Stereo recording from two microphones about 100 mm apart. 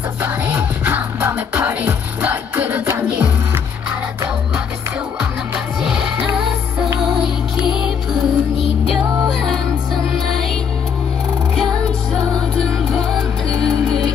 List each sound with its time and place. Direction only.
0.2 s music: 15° right (ahead or behind)
5.8 s music: 5° right (ahead or behind)
7.8 s music: 5° right (ahead or behind)
11.5 s music: 5° left (ahead or behind)